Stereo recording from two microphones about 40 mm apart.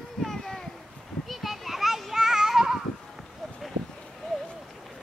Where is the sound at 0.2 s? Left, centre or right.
Centre.